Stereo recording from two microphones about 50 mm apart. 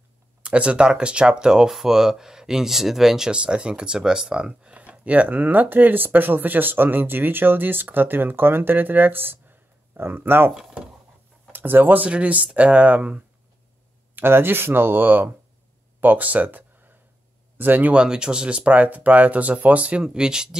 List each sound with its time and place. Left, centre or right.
0.4 s speech: right; by 3.3 s centre
3.3 s speech: centre
4.7 s speech: right
10.5 s speech: centre
11.5 s speech: right
14.1 s speech: right
17.9 s speech: centre
18.7 s speech: right
20.0 s speech: centre